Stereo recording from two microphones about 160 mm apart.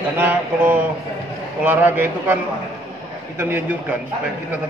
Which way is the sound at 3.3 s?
15° right (ahead or behind).